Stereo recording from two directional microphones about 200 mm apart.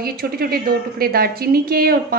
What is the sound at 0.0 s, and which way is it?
A woman's voice, 50° right (ahead or behind).